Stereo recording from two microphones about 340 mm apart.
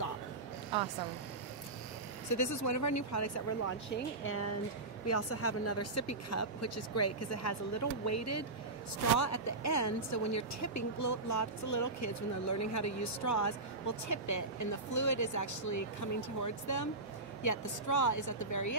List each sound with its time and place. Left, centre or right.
2.3 s speech: left
3.9 s speech: left